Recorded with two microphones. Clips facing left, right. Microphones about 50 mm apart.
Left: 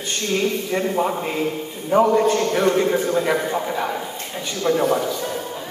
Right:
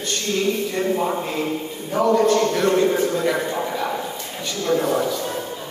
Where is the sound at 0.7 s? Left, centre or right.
Centre.